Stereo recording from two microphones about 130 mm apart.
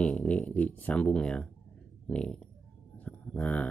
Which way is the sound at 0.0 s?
10° left (ahead or behind).